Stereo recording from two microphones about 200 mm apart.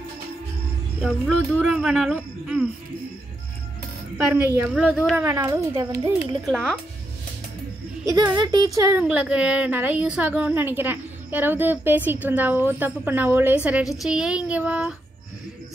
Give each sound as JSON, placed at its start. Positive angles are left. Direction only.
{"t": 1.0, "sound": "speech", "side_deg": -5}
{"t": 4.2, "sound": "speech", "side_deg": -5}
{"t": 5.2, "sound": "a woman's voice", "side_deg": -15}
{"t": 6.4, "sound": "speech", "side_deg": 0}
{"t": 8.1, "sound": "a woman's voice", "side_deg": -20}
{"t": 9.0, "sound": "a woman's voice", "side_deg": -5}